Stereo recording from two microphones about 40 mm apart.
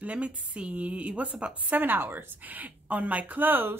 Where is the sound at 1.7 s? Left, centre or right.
Right.